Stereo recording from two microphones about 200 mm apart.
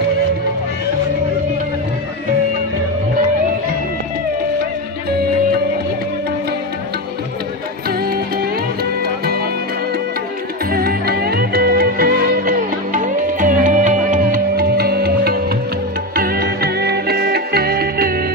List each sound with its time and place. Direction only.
8.0 s music: 50° right (ahead or behind)
10.7 s music: 50° right (ahead or behind)